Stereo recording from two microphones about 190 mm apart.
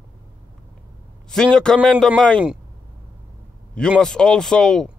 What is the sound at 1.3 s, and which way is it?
A man's voice, 5° left (ahead or behind).